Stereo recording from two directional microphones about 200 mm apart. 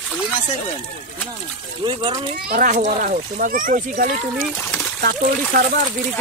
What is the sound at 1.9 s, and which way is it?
Speech, 25° right (ahead or behind).